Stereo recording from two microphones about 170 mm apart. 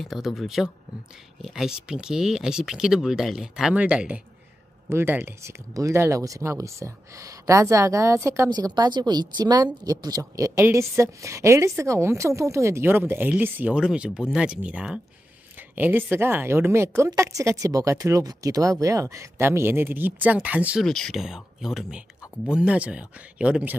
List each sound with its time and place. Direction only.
0.0 s speech: centre (ahead or behind)
20.8 s speech: 5° left (ahead or behind)